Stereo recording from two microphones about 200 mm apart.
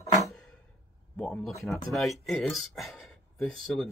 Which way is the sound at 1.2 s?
5° left (ahead or behind).